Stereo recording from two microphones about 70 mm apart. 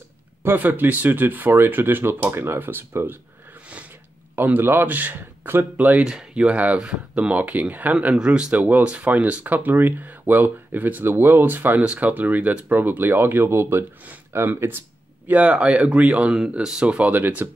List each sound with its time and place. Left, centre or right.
0.4 s speech: right
4.4 s speech: right
6.0 s speech: centre; by 14.8 s right
15.2 s speech: right